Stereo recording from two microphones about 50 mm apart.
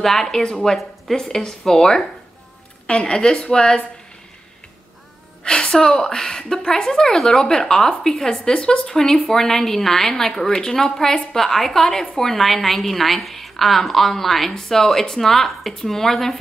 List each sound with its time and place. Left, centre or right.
0.0 s a woman's voice: centre
0.7 s a woman's voice: centre
5.4 s a woman's voice: centre